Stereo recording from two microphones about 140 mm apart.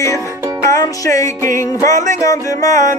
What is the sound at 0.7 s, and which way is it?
Music, 25° left (ahead or behind).